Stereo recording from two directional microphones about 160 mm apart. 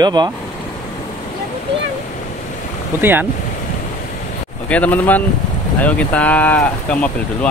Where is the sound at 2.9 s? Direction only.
10° right (ahead or behind).